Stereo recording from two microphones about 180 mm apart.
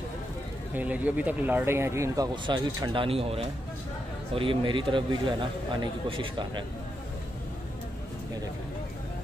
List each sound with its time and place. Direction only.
0.7 s speech: 10° right (ahead or behind); by 6.6 s 30° right (ahead or behind)